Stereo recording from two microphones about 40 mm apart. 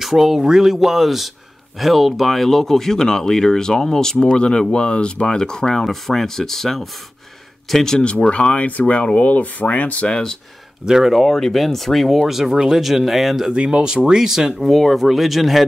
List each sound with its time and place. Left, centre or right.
0.0 s speech: centre
4.2 s speech: left; by 7.8 s centre
8.0 s speech: left
8.6 s speech: left
10.0 s speech: centre
10.9 s speech: centre
11.1 s speech: centre
13.5 s speech: right
14.6 s speech: centre